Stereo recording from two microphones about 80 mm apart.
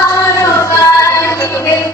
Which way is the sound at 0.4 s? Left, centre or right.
Left.